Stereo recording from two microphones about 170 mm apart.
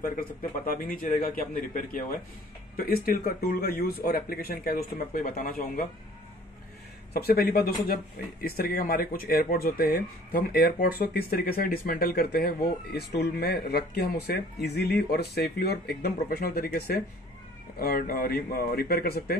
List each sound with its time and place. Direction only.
0.0 s speech: 55° left (ahead or behind)
7.2 s speech: 65° left (ahead or behind)